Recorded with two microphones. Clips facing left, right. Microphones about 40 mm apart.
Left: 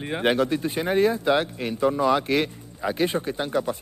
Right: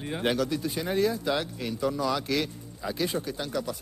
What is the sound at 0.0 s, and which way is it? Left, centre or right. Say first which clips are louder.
Speech: left 5 dB; left.